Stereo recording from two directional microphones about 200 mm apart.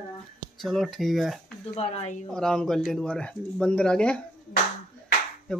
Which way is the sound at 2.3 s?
5° left (ahead or behind).